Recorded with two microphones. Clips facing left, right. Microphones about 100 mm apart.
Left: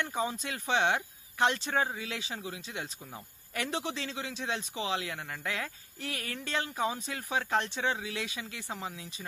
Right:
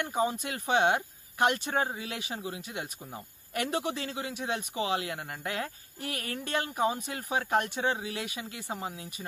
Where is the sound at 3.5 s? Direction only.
50° right (ahead or behind).